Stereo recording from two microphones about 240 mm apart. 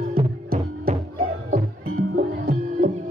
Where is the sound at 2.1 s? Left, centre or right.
Right.